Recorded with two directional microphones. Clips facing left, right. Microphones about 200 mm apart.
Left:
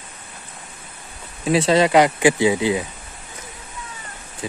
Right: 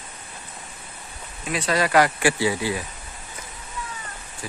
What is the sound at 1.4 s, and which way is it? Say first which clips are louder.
Speech: left 8 dB; 25° left (ahead or behind).